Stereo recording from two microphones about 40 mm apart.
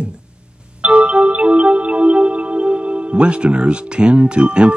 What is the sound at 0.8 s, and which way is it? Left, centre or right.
Music, right.